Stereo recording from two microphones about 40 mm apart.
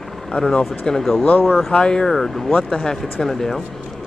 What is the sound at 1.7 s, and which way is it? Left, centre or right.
Speech, left.